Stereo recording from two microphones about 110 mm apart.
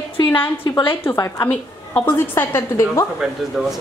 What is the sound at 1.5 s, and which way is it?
A woman's voice, 15° left (ahead or behind).